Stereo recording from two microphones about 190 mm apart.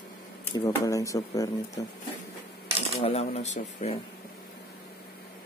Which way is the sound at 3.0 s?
35° left (ahead or behind).